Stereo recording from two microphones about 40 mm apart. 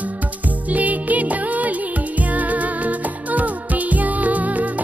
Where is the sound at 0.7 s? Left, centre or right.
Right.